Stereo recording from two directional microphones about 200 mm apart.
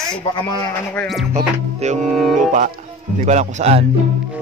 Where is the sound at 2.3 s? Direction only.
40° right (ahead or behind).